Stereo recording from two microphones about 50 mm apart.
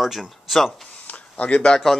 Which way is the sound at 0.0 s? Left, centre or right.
Centre.